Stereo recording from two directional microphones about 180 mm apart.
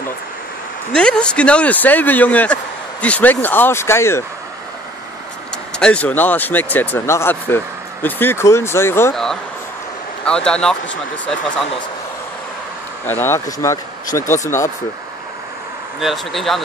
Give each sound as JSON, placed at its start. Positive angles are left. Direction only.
{"t": 0.9, "sound": "speech", "side_deg": 5}
{"t": 5.8, "sound": "speech", "side_deg": 5}
{"t": 9.1, "sound": "speech", "side_deg": 0}
{"t": 13.0, "sound": "speech", "side_deg": 10}
{"t": 16.0, "sound": "speech", "side_deg": 0}